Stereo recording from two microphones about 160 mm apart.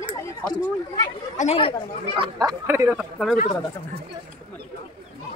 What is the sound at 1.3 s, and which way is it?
Speech, 50° left (ahead or behind).